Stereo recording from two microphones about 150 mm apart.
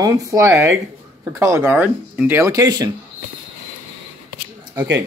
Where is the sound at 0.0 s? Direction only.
20° right (ahead or behind).